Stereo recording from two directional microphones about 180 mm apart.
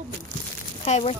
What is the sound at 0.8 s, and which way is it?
Speech, 35° left (ahead or behind).